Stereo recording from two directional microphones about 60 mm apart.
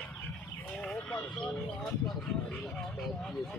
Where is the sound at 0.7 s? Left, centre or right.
Centre.